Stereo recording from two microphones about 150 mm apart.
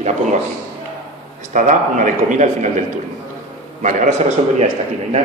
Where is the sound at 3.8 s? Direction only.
55° right (ahead or behind).